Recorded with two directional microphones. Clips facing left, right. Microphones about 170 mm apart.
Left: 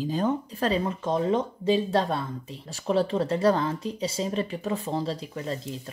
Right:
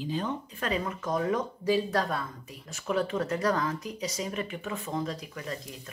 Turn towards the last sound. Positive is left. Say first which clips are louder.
# left 6 dB
turn(degrees=30)  # may be behind; listen again after turning